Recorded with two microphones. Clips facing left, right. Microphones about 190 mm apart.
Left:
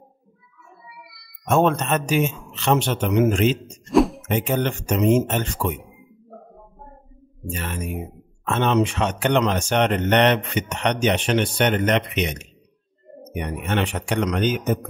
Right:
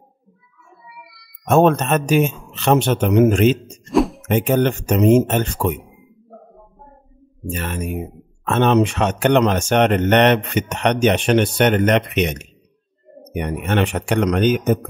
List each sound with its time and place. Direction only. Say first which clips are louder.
1.5 s speech: right 5 dB; 50° right (ahead or behind)
3.8 s music: even; centre (ahead or behind)
4.3 s speech: right 5 dB; 50° right (ahead or behind)
7.5 s a man's voice: right 4 dB; 55° right (ahead or behind)